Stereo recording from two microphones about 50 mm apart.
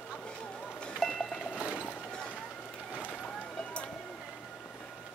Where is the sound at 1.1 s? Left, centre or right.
Centre.